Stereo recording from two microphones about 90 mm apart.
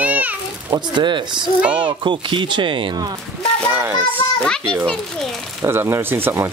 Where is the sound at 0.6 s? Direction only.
60° right (ahead or behind).